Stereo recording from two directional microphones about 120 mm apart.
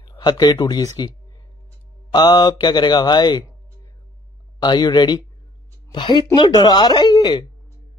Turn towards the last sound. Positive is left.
turn(degrees=35)  # may be behind; listen again after turning